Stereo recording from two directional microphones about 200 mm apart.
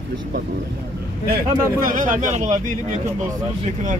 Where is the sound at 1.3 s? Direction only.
45° right (ahead or behind).